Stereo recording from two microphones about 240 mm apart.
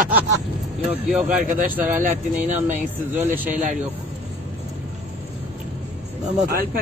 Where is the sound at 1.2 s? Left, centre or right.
Right.